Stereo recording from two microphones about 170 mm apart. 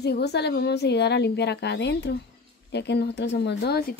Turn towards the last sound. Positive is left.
turn(degrees=65)  # may be behind; listen again after turning